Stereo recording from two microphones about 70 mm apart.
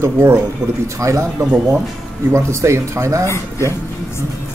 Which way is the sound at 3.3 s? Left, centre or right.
Left.